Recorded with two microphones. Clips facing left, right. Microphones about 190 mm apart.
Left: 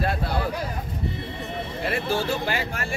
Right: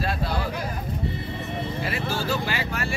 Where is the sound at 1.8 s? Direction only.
55° left (ahead or behind).